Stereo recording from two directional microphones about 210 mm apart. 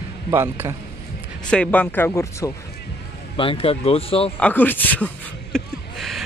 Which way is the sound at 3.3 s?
25° left (ahead or behind).